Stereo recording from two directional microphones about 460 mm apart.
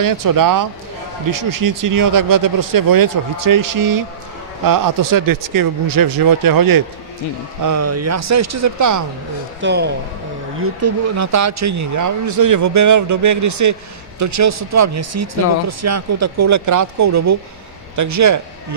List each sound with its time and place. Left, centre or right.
0.0 s speech: right
7.6 s speech: right
9.6 s a man's voice: right
10.6 s speech: right